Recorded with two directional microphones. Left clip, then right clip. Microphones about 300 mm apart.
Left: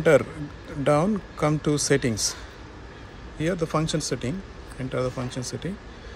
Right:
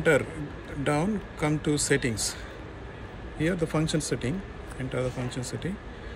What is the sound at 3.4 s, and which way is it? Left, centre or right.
Speech, centre.